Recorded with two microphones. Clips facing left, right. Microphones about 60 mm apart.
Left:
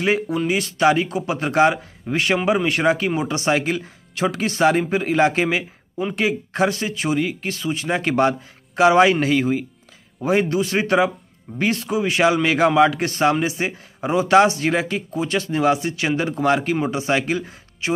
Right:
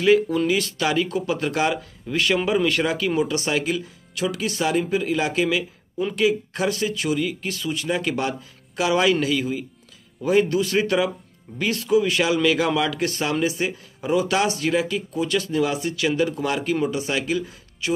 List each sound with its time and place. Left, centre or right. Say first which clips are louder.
0.0 s speech: right 3 dB; left
10.2 s speech: even; left